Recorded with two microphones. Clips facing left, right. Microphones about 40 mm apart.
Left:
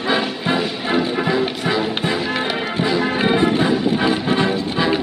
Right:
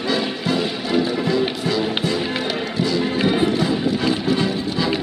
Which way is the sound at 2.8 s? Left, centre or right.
Left.